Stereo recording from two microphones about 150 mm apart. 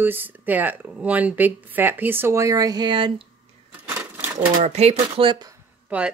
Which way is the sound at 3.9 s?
10° right (ahead or behind).